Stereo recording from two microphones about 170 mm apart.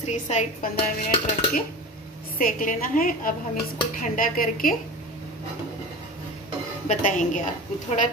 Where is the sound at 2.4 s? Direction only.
55° left (ahead or behind).